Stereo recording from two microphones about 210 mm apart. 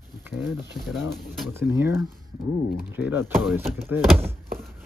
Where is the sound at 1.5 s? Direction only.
10° right (ahead or behind).